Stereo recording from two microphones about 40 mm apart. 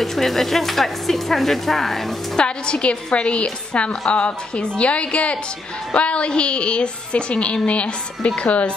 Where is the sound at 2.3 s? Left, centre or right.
Left.